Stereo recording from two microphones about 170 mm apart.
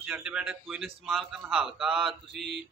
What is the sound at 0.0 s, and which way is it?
Speech, 5° right (ahead or behind).